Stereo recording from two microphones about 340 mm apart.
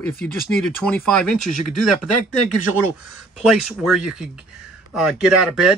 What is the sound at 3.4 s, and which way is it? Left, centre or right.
Speech, centre.